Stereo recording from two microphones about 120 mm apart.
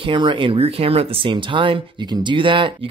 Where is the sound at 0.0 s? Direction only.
45° right (ahead or behind).